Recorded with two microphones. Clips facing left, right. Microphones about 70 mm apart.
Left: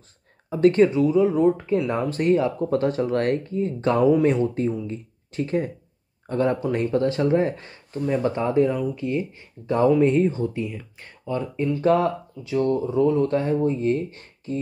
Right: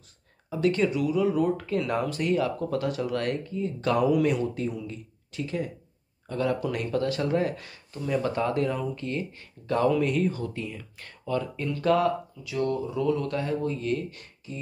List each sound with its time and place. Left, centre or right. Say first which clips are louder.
0.5 s speech: left 7 dB; left
2.0 s speech: left 5 dB; left